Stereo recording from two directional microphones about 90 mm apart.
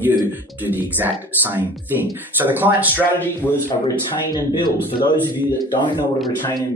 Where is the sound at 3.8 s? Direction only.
50° left (ahead or behind).